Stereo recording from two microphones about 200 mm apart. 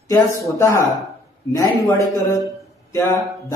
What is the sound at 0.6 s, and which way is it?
Speech, 15° left (ahead or behind).